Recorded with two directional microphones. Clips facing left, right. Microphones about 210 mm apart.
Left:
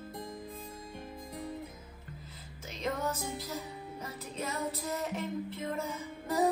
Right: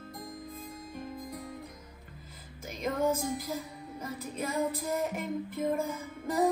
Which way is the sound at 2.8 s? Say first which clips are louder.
Right 5 dB; 10° right (ahead or behind).